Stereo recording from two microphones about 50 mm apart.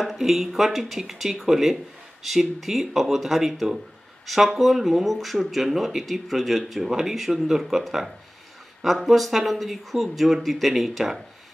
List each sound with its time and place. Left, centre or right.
0.2 s speech: centre